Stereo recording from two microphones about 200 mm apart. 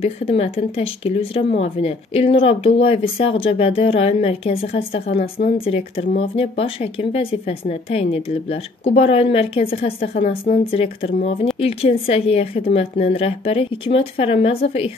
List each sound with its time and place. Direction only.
0.0 s a woman's voice: 30° left (ahead or behind)